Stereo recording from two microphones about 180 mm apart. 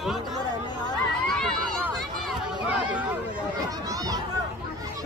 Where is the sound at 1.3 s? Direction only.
5° left (ahead or behind).